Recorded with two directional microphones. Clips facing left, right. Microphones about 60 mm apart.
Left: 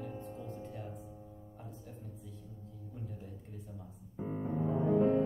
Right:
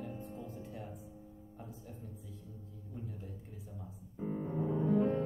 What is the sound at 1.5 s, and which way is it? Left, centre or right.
Speech, centre.